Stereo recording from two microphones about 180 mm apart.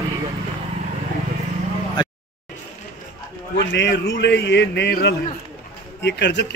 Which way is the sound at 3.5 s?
80° left.